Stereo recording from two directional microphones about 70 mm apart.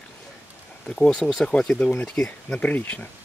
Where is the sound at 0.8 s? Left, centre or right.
Centre.